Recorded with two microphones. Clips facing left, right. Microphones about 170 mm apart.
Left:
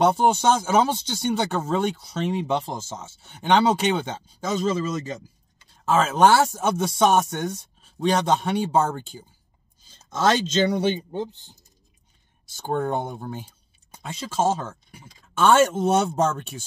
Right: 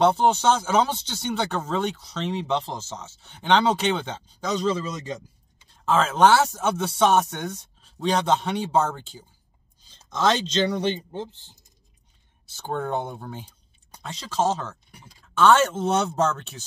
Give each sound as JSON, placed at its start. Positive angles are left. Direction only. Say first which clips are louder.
{"t": 0.0, "sound": "speech", "louder": "even", "side_deg": 10}
{"t": 10.1, "sound": "speech", "louder": "left 2 dB", "side_deg": 50}
{"t": 10.7, "sound": "speech", "louder": "left 3 dB", "side_deg": 10}
{"t": 13.0, "sound": "a sound", "louder": "left 2 dB", "side_deg": 10}
{"t": 14.3, "sound": "speech", "louder": "left 1 dB", "side_deg": 10}